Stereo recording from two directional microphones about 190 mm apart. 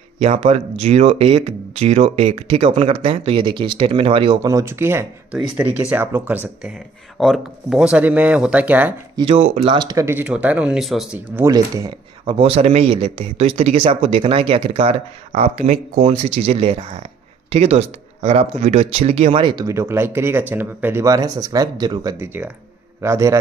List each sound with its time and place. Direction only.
0.2 s speech: 35° right (ahead or behind); by 8.9 s 10° right (ahead or behind)
9.1 s speech: 30° right (ahead or behind); by 11.2 s 5° right (ahead or behind)
11.3 s speech: 15° right (ahead or behind)
12.3 s speech: 30° right (ahead or behind)